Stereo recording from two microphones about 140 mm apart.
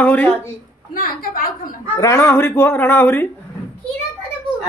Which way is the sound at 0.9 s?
90° left.